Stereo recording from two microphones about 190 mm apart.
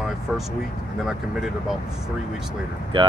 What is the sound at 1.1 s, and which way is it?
Speech, centre (ahead or behind).